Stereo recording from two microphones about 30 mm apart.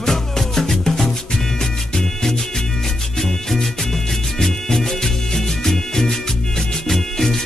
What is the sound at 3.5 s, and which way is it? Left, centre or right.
Music, centre.